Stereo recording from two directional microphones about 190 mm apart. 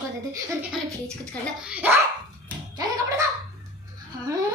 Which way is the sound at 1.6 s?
10° right (ahead or behind).